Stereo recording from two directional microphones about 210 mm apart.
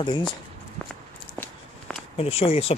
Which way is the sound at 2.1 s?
30° left (ahead or behind).